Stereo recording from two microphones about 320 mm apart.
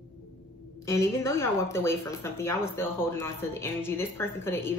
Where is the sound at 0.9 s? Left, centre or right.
Centre.